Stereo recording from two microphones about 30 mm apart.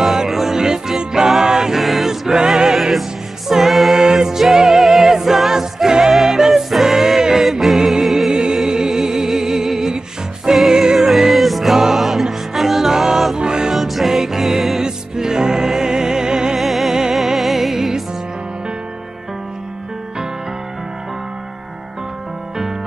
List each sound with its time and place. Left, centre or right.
0.0 s music: centre
0.6 s music: right
1.8 s choir: centre; by 2.7 s right
2.7 s music: centre
3.9 s music: right
8.3 s music: right
11.0 s music: centre
13.4 s music: right
13.7 s music: centre
14.8 s music: right
16.5 s music: centre